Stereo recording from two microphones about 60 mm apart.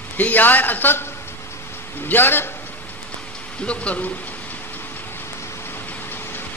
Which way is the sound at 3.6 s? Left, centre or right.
Centre.